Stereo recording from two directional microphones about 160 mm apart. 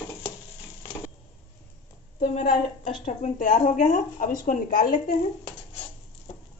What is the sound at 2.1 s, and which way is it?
A woman's voice, 50° left (ahead or behind).